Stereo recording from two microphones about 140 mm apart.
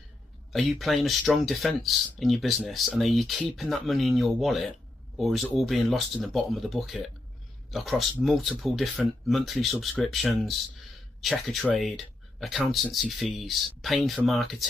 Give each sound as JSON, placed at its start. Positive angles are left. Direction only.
{"t": 0.5, "sound": "speech", "side_deg": 0}